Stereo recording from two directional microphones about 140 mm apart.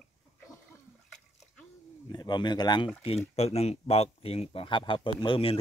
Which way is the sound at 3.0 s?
45° left (ahead or behind).